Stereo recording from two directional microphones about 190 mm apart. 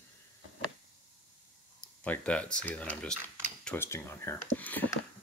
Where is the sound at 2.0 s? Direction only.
5° left (ahead or behind).